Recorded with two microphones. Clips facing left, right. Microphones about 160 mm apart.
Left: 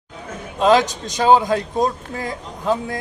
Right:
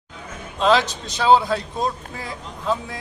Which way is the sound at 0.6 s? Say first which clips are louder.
Left 3 dB; 15° left (ahead or behind).